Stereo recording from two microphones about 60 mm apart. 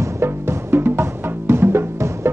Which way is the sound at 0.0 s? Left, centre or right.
Right.